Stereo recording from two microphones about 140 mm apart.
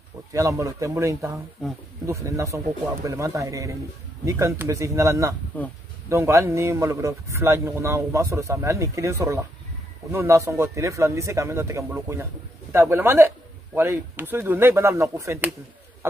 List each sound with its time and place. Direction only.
0.3 s a man's voice: 20° right (ahead or behind)
1.6 s speech: 5° left (ahead or behind)
2.0 s a man's voice: 20° right (ahead or behind)